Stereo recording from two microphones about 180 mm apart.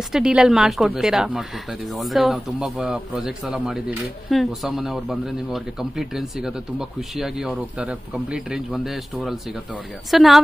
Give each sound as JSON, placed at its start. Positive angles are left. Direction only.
{"t": 0.1, "sound": "speech", "side_deg": -5}